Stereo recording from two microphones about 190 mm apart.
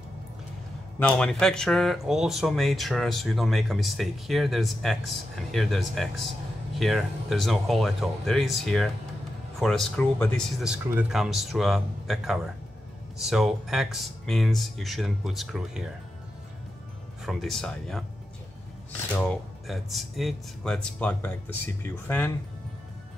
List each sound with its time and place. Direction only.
0.9 s speech: 5° left (ahead or behind)
10.9 s speech: 5° right (ahead or behind)
17.2 s speech: centre (ahead or behind)
19.7 s speech: centre (ahead or behind)